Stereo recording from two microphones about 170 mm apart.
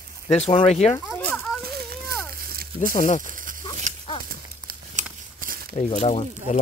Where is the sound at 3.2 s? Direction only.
50° right (ahead or behind).